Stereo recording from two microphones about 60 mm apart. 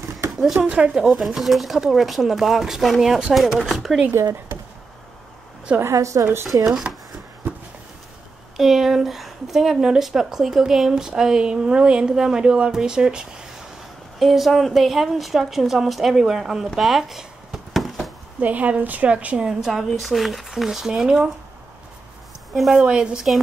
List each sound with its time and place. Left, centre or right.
0.6 s a woman's voice: right
0.9 s a woman's voice: centre
5.8 s a woman's voice: right
6.7 s speech: centre
8.5 s speech: centre
14.2 s a woman's voice: centre
18.4 s a woman's voice: right
19.7 s a woman's voice: centre
22.5 s a woman's voice: centre
22.8 s speech: centre